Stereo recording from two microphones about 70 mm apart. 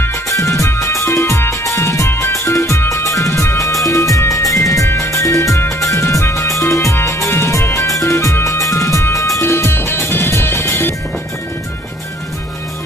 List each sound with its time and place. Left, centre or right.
0.3 s music: left
2.0 s music: left
2.4 s music: left
4.8 s music: left
9.4 s music: left